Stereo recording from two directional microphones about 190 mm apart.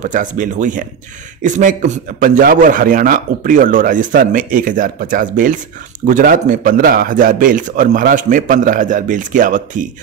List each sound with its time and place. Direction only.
0.0 s a man's voice: 40° right (ahead or behind)